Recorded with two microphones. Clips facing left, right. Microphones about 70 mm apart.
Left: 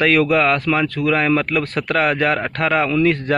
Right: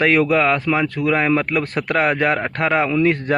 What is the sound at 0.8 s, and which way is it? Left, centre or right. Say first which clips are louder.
Speech: even; right.